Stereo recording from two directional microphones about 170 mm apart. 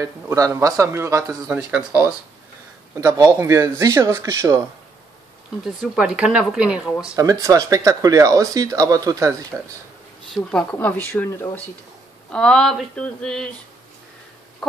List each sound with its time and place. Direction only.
0.0 s speech: 20° right (ahead or behind)
1.5 s speech: 5° right (ahead or behind)
3.0 s speech: 20° right (ahead or behind)
5.8 s speech: 5° right (ahead or behind)
7.2 s speech: 20° right (ahead or behind)
10.3 s speech: 5° left (ahead or behind)
12.3 s speech: 5° left (ahead or behind)
14.6 s a sound: centre (ahead or behind)